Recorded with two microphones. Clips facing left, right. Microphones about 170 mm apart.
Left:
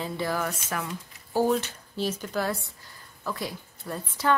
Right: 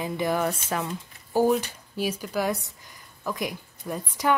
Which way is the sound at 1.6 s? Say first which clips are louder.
Right 1 dB; 10° right (ahead or behind).